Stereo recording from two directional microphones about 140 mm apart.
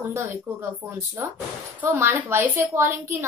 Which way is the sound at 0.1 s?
20° right (ahead or behind).